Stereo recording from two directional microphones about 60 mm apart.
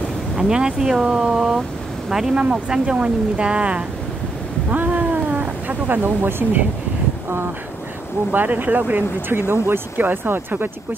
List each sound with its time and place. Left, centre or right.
0.4 s speech: centre
4.6 s a sound: right
8.3 s speech: right
9.3 s speech: right